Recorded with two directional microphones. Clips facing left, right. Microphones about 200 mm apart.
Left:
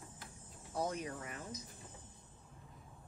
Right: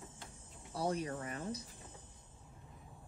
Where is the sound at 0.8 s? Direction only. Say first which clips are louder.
Right 2 dB; 35° right (ahead or behind).